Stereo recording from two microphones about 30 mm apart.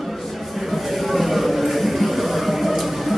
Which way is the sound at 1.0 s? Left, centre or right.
Centre.